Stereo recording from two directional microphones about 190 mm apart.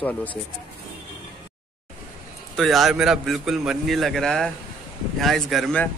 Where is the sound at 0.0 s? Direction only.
10° left (ahead or behind).